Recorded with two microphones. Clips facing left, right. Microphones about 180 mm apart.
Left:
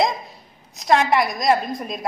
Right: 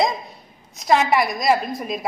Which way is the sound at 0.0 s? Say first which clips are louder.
Even; centre (ahead or behind).